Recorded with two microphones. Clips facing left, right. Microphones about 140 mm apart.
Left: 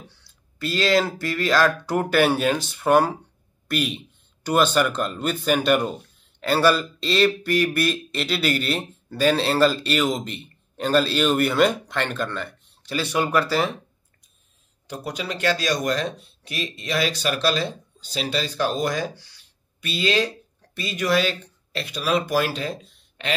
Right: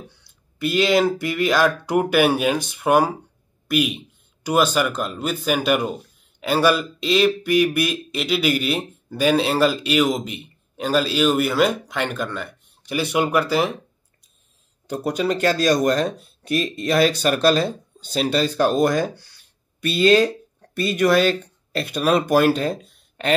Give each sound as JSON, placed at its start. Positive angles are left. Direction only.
{"t": 0.6, "sound": "speech", "side_deg": -15}
{"t": 14.9, "sound": "speech", "side_deg": -45}